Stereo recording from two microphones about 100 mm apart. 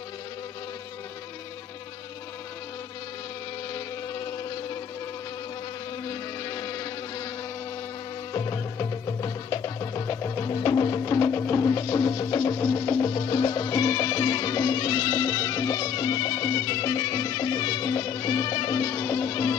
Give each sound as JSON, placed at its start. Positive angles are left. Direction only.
{"t": 3.7, "sound": "a sound", "side_deg": 45}
{"t": 6.0, "sound": "insect", "side_deg": 35}
{"t": 8.3, "sound": "music", "side_deg": 40}
{"t": 13.1, "sound": "music", "side_deg": 50}